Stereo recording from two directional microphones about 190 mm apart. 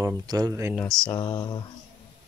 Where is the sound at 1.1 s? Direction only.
20° left (ahead or behind).